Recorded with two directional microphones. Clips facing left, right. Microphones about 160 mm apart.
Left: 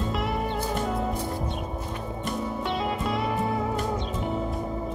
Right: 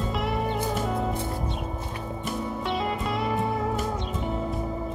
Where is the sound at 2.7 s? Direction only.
Centre (ahead or behind).